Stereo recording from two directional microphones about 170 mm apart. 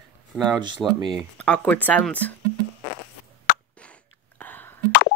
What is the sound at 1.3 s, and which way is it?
Speech, 10° left (ahead or behind).